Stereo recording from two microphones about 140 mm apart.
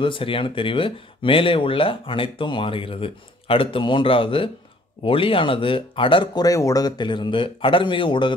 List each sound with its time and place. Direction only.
0.0 s speech: 40° left (ahead or behind)